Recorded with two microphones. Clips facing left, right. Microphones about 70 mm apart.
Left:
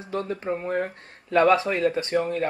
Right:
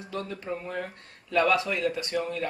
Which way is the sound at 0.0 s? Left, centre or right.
Left.